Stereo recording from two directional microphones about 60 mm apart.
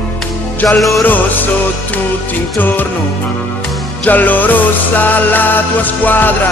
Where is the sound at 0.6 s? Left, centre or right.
Centre.